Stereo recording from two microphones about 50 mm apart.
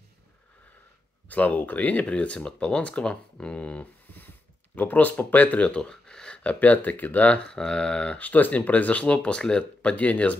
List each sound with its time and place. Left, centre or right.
1.3 s speech: left
4.7 s speech: left
5.8 s speech: centre; by 7.4 s left
7.4 s speech: centre
8.2 s speech: left